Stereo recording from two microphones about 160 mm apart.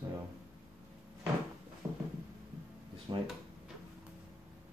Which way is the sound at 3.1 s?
30° right (ahead or behind).